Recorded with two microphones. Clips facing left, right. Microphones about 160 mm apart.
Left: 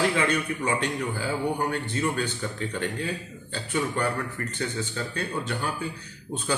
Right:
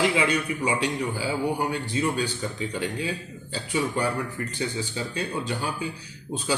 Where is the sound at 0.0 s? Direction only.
10° right (ahead or behind).